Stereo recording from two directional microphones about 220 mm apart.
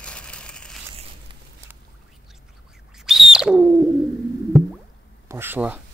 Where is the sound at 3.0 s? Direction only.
Centre (ahead or behind).